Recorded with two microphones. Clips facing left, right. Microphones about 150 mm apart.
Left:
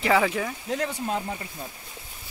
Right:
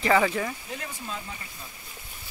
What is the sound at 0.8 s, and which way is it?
Speech, 70° left (ahead or behind).